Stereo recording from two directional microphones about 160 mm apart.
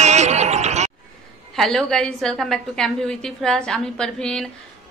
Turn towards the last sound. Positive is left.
turn(degrees=5)  # may be behind; listen again after turning